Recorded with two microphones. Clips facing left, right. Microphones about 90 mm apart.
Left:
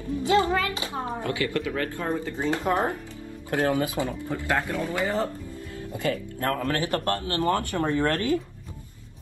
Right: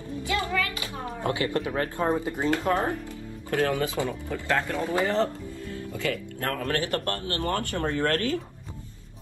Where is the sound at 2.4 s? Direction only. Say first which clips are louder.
Left 1 dB; 20° left (ahead or behind).